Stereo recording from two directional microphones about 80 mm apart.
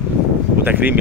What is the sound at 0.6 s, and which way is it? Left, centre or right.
Speech, right.